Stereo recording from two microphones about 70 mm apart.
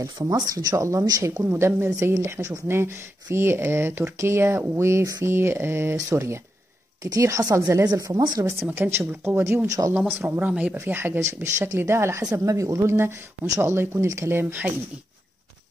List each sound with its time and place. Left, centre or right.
0.0 s speech: right
1.2 s speech: right
7.8 s speech: right
8.7 s speech: right
9.7 s speech: right
9.9 s speech: centre; by 12.2 s right
12.2 s speech: right